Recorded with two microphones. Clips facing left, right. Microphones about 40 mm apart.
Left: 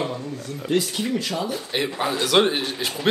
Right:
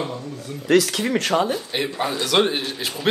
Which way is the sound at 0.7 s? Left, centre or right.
Right.